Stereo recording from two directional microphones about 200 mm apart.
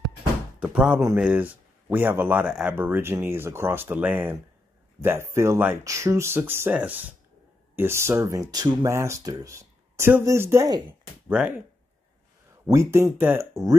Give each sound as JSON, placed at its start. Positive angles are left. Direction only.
{"t": 0.6, "sound": "speech", "side_deg": -5}
{"t": 12.6, "sound": "speech", "side_deg": -15}